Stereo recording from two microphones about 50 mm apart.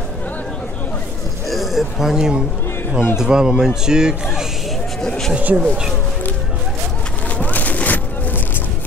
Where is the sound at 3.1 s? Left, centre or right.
Centre.